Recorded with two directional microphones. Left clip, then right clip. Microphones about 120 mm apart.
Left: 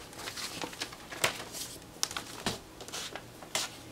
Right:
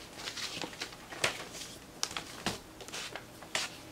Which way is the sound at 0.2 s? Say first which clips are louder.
Even; 15° left (ahead or behind).